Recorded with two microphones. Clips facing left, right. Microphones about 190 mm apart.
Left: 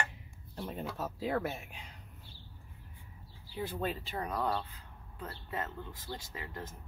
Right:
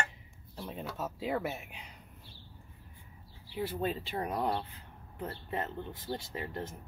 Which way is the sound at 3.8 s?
25° right (ahead or behind).